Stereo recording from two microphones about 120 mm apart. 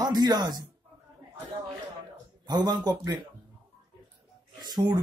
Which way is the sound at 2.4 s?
35° right (ahead or behind).